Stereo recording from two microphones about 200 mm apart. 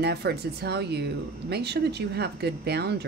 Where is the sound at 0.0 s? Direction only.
55° right (ahead or behind).